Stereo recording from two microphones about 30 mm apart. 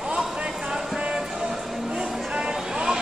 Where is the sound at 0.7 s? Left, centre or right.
Right.